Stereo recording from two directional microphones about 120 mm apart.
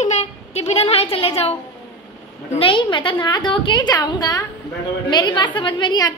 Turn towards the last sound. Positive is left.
turn(degrees=35)  # may be behind; listen again after turning